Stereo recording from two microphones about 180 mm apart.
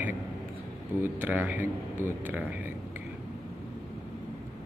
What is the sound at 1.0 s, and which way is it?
A man's voice, 10° right (ahead or behind).